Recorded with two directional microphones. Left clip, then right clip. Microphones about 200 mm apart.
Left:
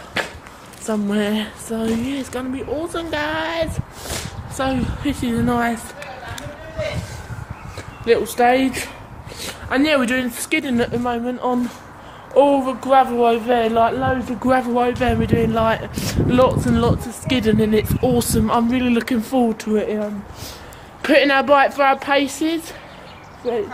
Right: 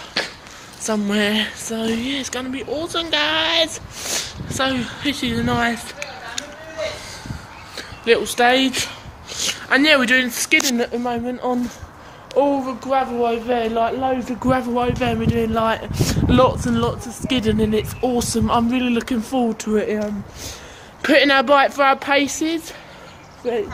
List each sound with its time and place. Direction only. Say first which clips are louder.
0.8 s speech: right 2 dB; 5° right (ahead or behind)
7.7 s speech: even; centre (ahead or behind)
12.4 s speech: left 4 dB; 10° left (ahead or behind)
14.4 s speech: left 3 dB; centre (ahead or behind); by 16.5 s 15° right (ahead or behind)
16.7 s speech: left 2 dB; 5° right (ahead or behind)